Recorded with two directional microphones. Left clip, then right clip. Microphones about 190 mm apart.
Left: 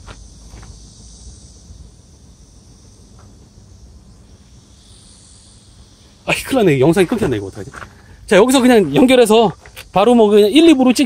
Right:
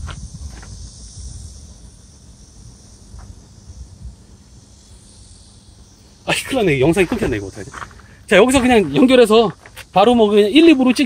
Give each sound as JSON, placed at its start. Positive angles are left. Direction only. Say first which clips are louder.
{"t": 6.4, "sound": "speech", "louder": "left 3 dB", "side_deg": 25}